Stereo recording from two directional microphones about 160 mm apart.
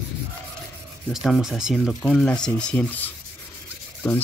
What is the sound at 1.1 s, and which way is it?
Speech, 5° right (ahead or behind).